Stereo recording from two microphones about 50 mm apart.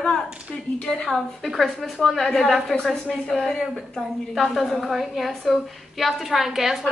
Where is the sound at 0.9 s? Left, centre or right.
Centre.